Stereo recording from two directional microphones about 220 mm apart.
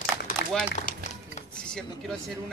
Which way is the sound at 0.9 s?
40° left (ahead or behind).